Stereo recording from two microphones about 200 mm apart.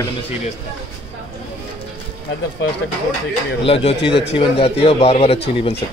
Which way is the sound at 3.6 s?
25° left (ahead or behind).